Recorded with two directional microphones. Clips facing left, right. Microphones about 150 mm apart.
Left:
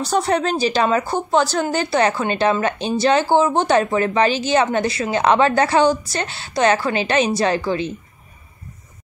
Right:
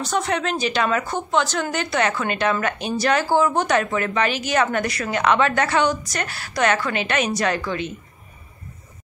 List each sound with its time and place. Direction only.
0.0 s a woman's voice: 35° left (ahead or behind)